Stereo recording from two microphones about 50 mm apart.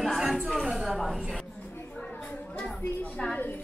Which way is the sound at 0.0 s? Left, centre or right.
Centre.